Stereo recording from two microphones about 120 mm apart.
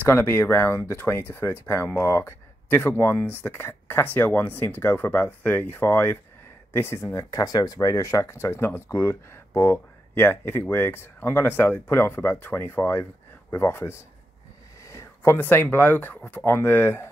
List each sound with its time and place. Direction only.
0.0 s speech: 20° left (ahead or behind)